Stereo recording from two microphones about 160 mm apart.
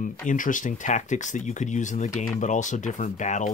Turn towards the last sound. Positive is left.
turn(degrees=50)  # may be behind; listen again after turning